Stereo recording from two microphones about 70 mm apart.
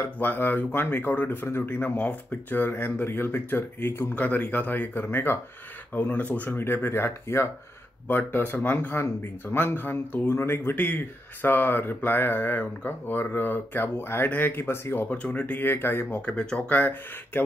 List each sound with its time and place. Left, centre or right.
0.0 s speech: left
8.1 s speech: left
15.0 s speech: centre
16.2 s speech: centre